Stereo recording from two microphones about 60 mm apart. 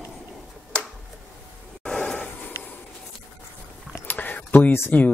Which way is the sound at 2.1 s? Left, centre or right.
Left.